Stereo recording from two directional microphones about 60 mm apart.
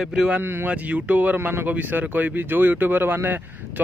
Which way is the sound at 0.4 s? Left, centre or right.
Right.